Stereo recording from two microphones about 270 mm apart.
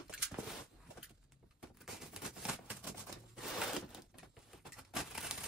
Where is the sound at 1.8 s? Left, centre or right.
Centre.